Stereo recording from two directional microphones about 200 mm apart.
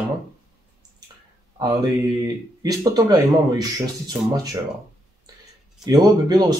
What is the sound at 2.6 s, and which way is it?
A man's voice, 20° right (ahead or behind).